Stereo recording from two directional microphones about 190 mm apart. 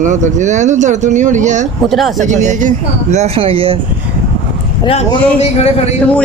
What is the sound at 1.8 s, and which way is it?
Speech, centre (ahead or behind).